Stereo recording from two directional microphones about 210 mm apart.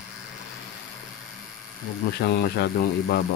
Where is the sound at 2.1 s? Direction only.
50° left (ahead or behind).